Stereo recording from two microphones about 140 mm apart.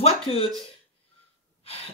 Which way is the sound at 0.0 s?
45° left (ahead or behind).